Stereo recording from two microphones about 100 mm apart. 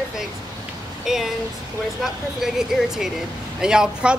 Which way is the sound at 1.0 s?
5° right (ahead or behind).